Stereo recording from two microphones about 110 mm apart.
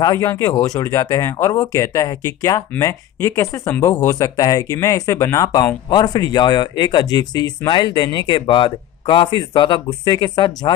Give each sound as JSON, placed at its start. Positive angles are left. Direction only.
{"t": 0.0, "sound": "speech", "side_deg": 35}